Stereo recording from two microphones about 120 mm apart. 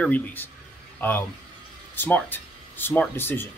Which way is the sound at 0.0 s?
15° left (ahead or behind).